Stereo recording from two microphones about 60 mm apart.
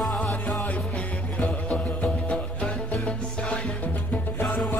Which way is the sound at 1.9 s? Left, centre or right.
Left.